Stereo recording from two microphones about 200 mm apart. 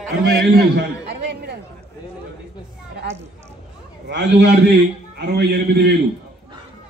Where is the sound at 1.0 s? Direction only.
55° right (ahead or behind).